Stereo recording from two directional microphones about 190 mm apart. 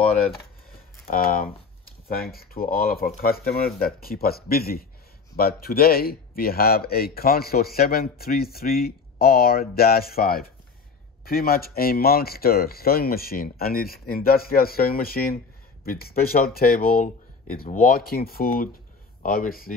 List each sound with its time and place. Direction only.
1.0 s speech: 50° left (ahead or behind)